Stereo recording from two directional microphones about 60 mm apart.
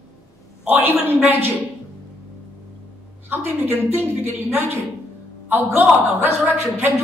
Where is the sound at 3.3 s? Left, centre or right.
Right.